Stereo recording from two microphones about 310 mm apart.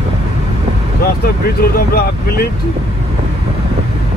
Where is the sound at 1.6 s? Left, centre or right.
Left.